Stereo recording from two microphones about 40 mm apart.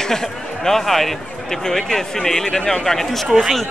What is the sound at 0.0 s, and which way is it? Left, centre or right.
Speech, centre.